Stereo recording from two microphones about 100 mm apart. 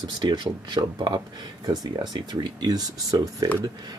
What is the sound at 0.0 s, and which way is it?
Speech, 50° right (ahead or behind).